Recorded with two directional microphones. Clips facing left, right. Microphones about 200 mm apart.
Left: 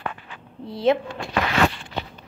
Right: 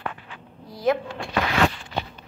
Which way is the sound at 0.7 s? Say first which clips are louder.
Left 3 dB; 25° left (ahead or behind).